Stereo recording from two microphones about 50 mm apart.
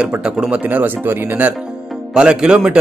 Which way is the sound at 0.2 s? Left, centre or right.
Right.